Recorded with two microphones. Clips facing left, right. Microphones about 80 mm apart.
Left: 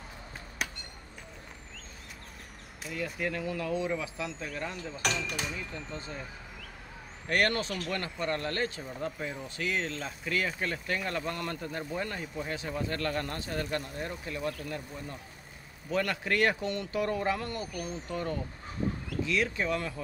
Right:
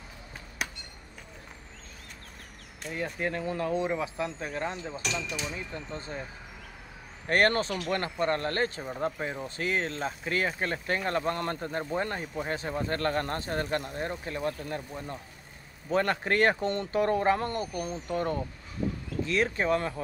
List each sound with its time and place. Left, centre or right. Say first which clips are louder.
0.6 s a sound: right 1 dB; centre
3.2 s speech: right 3 dB; right
5.0 s speech: left 2 dB; left
5.5 s speech: right 2 dB; right
7.2 s speech: right 4 dB; right